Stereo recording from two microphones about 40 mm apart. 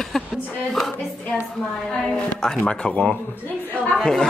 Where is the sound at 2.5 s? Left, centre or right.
Left.